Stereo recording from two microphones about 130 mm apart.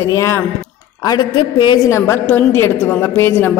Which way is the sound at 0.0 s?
25° left (ahead or behind).